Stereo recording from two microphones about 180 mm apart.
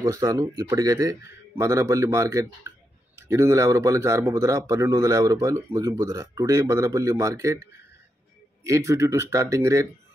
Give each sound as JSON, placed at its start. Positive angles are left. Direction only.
{"t": 0.0, "sound": "a man's voice", "side_deg": -20}
{"t": 8.6, "sound": "a man's voice", "side_deg": -15}